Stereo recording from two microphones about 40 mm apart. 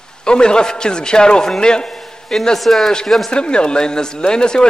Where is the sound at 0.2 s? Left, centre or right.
Left.